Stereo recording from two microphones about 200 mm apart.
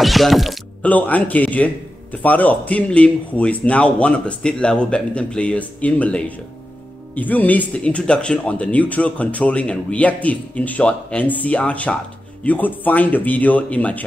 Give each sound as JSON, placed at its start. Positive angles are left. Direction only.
{"t": 0.0, "sound": "speech", "side_deg": 0}